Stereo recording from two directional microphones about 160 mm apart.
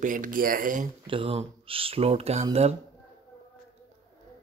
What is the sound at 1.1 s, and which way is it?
Speech, 35° right (ahead or behind).